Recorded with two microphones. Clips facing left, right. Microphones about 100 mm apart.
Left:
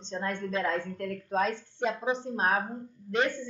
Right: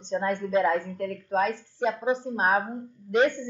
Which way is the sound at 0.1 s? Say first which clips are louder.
Right 7 dB; 15° right (ahead or behind).